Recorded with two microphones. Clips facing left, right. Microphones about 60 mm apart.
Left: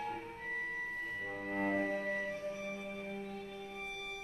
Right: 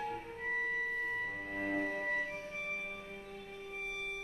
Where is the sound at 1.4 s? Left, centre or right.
Left.